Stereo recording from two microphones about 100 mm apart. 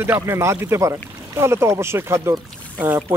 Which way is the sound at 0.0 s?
25° right (ahead or behind).